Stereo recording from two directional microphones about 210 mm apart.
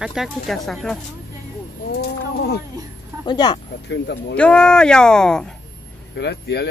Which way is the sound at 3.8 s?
55° left (ahead or behind).